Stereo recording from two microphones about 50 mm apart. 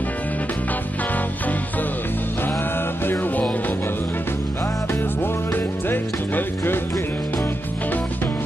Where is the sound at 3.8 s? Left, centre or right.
Left.